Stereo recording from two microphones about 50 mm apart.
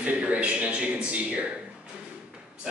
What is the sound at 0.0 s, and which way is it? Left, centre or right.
A man's voice, right.